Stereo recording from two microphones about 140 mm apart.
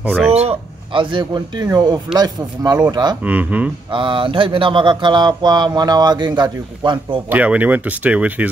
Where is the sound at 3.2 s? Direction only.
10° right (ahead or behind).